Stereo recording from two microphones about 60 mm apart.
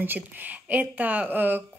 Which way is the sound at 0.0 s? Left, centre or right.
Right.